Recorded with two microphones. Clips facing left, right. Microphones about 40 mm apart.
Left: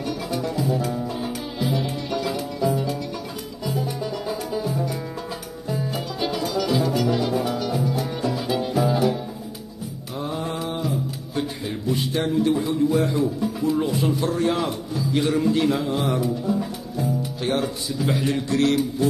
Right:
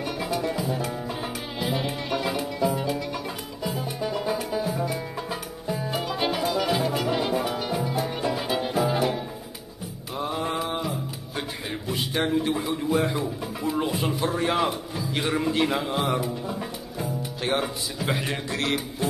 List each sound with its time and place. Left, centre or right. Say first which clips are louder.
0.0 s music: left 1 dB; centre
6.0 s music: even; right
10.1 s mantra: even; centre
10.4 s mantra: even; right
11.6 s a sound: left 4 dB; right
12.1 s speech: left 2 dB; right